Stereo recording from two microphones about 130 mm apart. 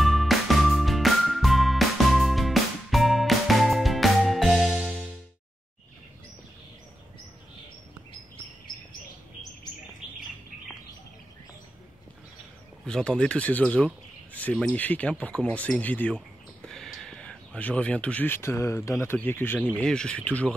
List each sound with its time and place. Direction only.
0.0 s music: centre (ahead or behind)
12.8 s speech: 5° left (ahead or behind)